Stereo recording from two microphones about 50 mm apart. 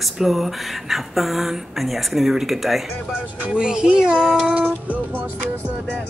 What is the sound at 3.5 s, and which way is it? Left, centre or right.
Speech, centre.